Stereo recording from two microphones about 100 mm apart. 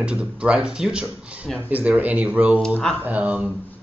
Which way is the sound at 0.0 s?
10° right (ahead or behind).